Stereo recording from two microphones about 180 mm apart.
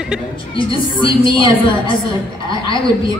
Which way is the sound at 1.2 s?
30° left (ahead or behind).